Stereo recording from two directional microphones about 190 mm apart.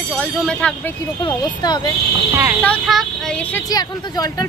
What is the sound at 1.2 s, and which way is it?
Speech, 20° left (ahead or behind).